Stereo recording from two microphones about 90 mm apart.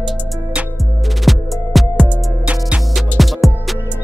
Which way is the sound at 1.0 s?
Centre (ahead or behind).